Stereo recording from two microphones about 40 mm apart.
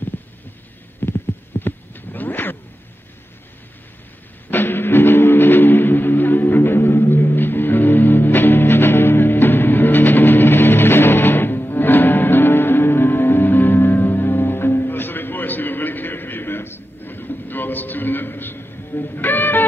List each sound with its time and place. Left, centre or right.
0.1 s heart sounds: left
1.0 s clip-clop: left
1.6 s a sound: left
4.5 s music: left